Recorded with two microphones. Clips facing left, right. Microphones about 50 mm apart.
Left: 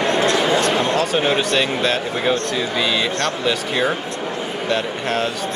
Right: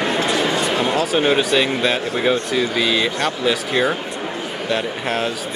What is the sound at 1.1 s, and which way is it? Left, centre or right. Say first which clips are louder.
Speech: right 1 dB; centre.